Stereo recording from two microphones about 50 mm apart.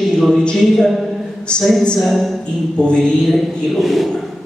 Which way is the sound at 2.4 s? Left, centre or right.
Centre.